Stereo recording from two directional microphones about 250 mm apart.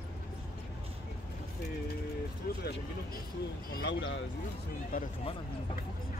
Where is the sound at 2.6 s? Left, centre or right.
Left.